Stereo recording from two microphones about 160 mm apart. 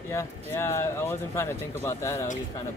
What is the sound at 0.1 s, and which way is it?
Speech, 15° left (ahead or behind).